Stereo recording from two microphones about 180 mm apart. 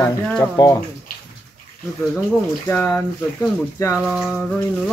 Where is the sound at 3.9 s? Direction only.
5° right (ahead or behind).